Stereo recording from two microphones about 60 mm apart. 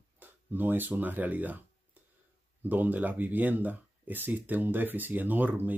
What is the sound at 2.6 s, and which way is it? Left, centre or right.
Speech, right.